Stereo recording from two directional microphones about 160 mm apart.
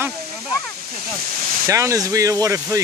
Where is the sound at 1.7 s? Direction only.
20° right (ahead or behind).